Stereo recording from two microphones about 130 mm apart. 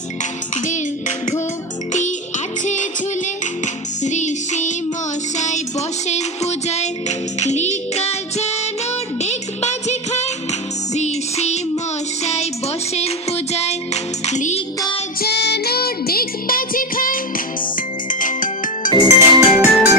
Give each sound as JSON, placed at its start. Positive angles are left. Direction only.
{"t": 0.7, "sound": "music", "side_deg": 70}
{"t": 2.6, "sound": "music", "side_deg": 70}
{"t": 16.4, "sound": "music", "side_deg": 90}
{"t": 18.2, "sound": "music", "side_deg": 90}
{"t": 19.0, "sound": "music", "side_deg": -15}